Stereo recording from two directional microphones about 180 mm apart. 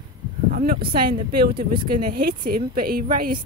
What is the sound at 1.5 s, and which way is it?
Speech, 25° right (ahead or behind).